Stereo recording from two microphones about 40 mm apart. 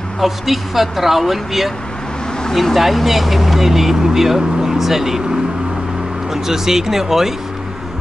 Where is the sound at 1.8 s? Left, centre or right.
Centre.